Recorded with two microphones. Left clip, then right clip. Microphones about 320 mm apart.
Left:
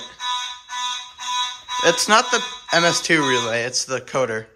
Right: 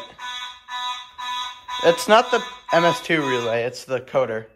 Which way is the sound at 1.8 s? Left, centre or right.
Centre.